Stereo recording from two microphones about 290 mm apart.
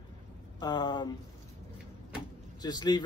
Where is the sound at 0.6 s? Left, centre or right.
Centre.